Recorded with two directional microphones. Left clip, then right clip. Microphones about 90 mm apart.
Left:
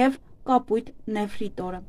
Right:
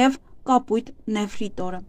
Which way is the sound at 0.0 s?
40° right (ahead or behind).